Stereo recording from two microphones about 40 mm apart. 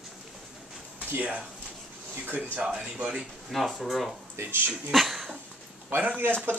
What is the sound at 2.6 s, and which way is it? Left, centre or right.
Speech, centre.